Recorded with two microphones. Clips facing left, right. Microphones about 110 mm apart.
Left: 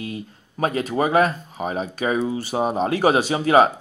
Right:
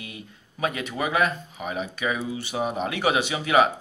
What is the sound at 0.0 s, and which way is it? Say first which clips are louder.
Speech: left 9 dB; 40° left (ahead or behind).